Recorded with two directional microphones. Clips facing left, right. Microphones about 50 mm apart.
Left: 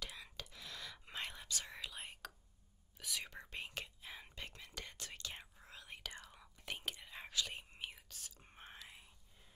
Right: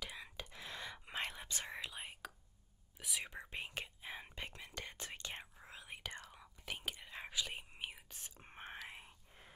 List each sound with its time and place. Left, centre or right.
0.0 s whispering: centre
1.4 s whispering: right
1.8 s whispering: centre
8.1 s whispering: right